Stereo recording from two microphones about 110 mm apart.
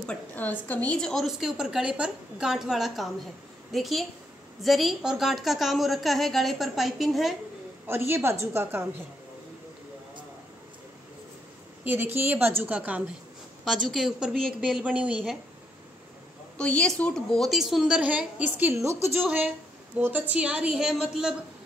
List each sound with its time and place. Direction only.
0.0 s a woman's voice: 10° left (ahead or behind)
7.8 s a woman's voice: 20° right (ahead or behind)
11.8 s a woman's voice: 15° right (ahead or behind)
13.7 s a woman's voice: centre (ahead or behind)
16.5 s a woman's voice: 10° left (ahead or behind); by 21.4 s 5° right (ahead or behind)